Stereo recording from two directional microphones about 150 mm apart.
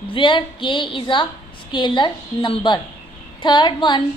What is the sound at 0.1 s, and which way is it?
A woman's voice, 35° left (ahead or behind).